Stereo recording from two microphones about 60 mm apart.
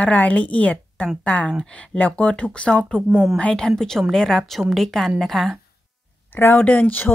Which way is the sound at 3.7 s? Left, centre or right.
Centre.